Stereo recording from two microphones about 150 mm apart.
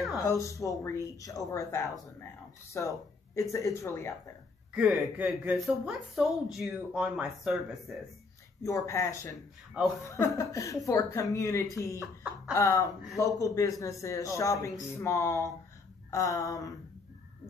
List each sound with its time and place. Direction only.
0.3 s speech: 20° left (ahead or behind)
4.7 s speech: 10° right (ahead or behind)
8.6 s speech: 20° left (ahead or behind)